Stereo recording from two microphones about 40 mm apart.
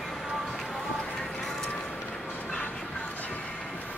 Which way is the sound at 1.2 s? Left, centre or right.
Centre.